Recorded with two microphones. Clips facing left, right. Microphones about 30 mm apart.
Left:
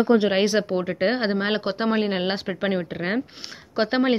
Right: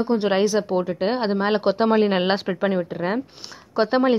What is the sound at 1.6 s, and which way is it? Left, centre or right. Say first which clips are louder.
Speech: right 5 dB; centre.